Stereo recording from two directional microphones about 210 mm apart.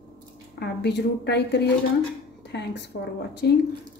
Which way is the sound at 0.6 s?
55° left (ahead or behind).